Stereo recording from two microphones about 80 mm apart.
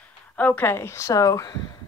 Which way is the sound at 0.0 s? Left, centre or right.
Centre.